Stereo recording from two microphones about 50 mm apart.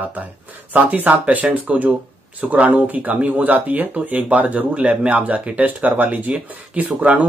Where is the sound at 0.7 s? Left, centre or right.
Right.